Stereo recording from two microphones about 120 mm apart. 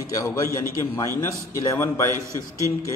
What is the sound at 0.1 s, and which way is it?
A man's voice, 25° left (ahead or behind).